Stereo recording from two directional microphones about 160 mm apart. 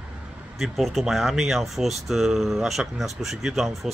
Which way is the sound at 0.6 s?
Centre (ahead or behind).